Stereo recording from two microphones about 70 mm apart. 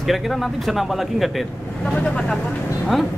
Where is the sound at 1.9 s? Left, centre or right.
Centre.